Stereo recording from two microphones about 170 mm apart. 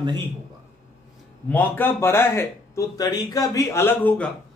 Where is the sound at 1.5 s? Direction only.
10° left (ahead or behind).